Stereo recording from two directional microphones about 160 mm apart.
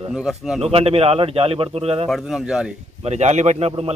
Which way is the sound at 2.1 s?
Centre (ahead or behind).